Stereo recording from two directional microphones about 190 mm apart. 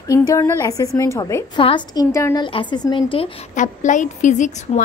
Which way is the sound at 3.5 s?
40° left (ahead or behind).